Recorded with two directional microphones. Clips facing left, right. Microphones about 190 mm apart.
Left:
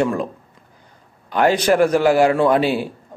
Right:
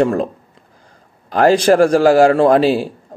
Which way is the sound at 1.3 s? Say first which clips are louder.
Right 4 dB; 40° right (ahead or behind).